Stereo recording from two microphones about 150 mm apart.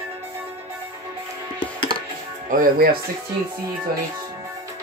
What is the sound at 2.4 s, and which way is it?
Speech, 65° right (ahead or behind).